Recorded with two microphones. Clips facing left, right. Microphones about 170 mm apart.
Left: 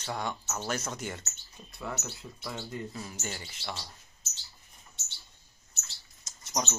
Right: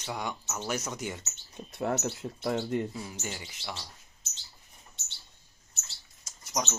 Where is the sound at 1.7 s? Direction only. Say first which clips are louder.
Right 8 dB; 60° right (ahead or behind).